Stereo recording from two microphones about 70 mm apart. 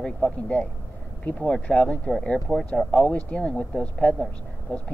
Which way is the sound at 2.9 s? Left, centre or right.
Left.